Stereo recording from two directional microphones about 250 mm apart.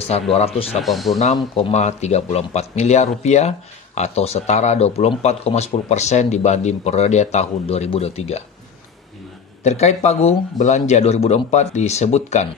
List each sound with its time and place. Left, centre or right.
0.1 s speech: left
0.8 s speech: centre
1.2 s speech: left
9.6 s speech: left